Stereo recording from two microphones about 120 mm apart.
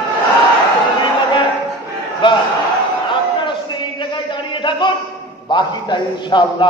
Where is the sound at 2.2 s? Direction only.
40° left (ahead or behind).